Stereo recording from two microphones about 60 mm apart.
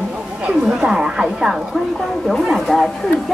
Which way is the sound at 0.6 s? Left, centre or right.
Centre.